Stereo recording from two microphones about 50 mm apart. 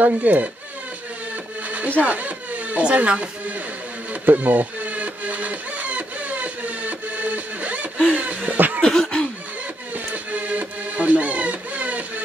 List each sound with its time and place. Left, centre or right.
0.0 s speech: right
1.9 s speech: right
4.1 s a sound: right
8.8 s cough: centre
10.1 s music: right